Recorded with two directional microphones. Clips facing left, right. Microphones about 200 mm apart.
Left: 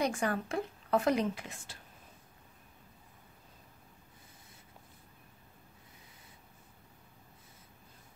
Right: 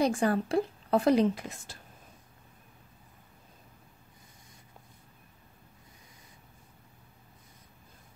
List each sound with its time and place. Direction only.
0.0 s a woman's voice: 35° right (ahead or behind)